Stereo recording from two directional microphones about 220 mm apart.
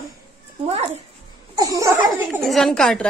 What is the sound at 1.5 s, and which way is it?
Laughter, 15° right (ahead or behind).